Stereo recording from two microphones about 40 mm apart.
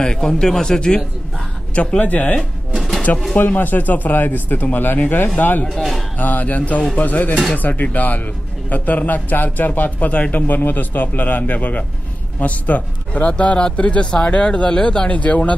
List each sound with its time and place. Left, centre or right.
0.0 s speech: centre
1.8 s a man's voice: left
3.3 s a man's voice: left
5.8 s a man's voice: centre
6.1 s a man's voice: left
10.4 s a man's voice: left
15.0 s speech: left